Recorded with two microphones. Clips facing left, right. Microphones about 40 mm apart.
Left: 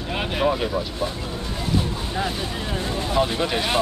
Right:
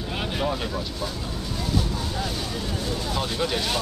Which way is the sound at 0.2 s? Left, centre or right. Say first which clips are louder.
Left 6 dB; centre.